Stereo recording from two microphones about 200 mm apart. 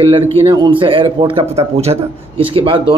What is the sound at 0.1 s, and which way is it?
Speech, 25° right (ahead or behind).